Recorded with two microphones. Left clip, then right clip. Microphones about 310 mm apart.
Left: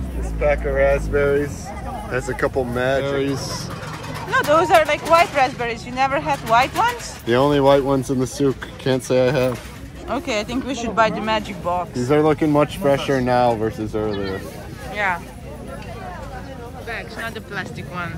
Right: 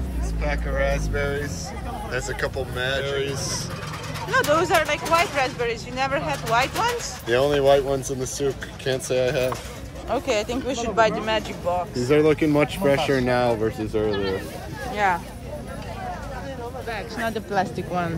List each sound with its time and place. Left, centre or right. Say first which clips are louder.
0.4 s speech: left 8 dB; left
3.3 s speech: left 1 dB; centre
7.2 s speech: left 3 dB; centre
10.0 s speech: even; centre
16.9 s speech: even; centre